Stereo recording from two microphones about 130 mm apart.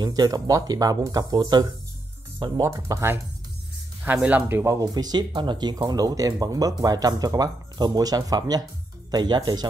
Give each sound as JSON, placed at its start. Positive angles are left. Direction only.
{"t": 0.0, "sound": "speech", "side_deg": -30}
{"t": 2.6, "sound": "speech", "side_deg": -25}
{"t": 4.0, "sound": "speech", "side_deg": -10}